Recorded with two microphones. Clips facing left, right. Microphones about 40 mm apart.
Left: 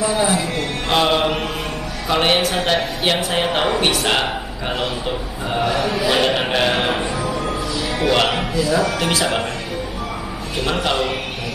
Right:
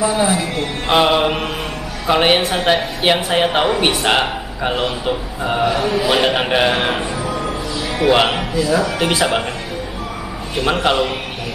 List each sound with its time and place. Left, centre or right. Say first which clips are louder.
0.0 s speech: right 2 dB; centre
0.8 s mantra: right 3 dB; centre
2.0 s a man's voice: right 3 dB; centre
8.0 s a man's voice: right 4 dB; centre
8.8 s a man's voice: right 2 dB; centre
10.7 s a man's voice: right 4 dB; centre